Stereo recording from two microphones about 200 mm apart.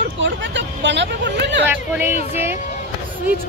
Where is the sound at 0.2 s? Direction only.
65° right (ahead or behind).